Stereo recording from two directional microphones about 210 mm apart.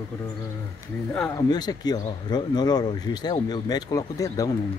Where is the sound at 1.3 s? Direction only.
20° left (ahead or behind).